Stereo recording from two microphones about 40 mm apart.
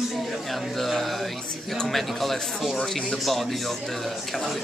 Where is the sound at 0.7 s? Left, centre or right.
Centre.